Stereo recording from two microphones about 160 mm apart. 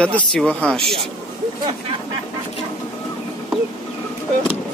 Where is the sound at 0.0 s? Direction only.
5° left (ahead or behind).